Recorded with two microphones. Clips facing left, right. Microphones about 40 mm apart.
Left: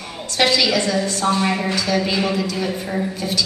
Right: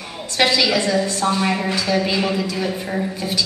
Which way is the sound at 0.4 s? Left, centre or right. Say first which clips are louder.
Even; centre.